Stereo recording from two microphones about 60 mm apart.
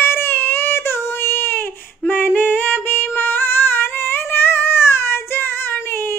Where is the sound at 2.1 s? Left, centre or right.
Left.